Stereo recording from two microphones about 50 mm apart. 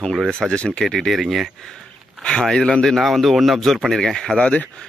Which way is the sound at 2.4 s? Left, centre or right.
Centre.